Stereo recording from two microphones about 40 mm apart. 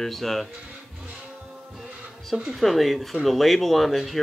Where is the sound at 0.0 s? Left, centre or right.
Centre.